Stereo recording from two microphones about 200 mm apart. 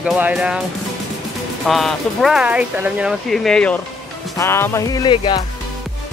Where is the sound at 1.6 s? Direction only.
Centre (ahead or behind); by 5.4 s 20° left (ahead or behind).